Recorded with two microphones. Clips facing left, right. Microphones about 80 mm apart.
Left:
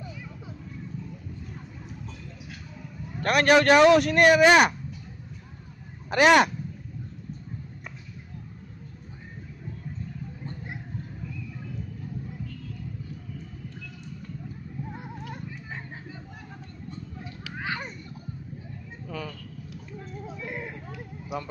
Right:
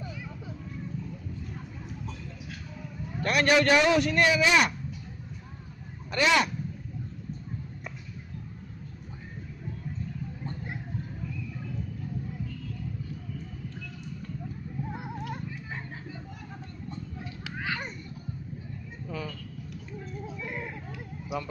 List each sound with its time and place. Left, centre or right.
3.3 s a man's voice: left
6.0 s speech: left
19.0 s a sound: left